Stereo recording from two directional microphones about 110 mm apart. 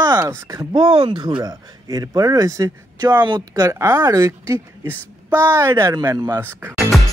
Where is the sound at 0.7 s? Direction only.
55° right (ahead or behind).